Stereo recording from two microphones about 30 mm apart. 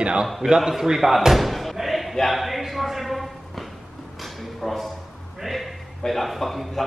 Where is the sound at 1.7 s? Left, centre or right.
Centre.